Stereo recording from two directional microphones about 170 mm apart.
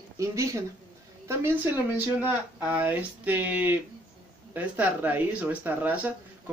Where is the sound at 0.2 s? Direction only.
20° right (ahead or behind).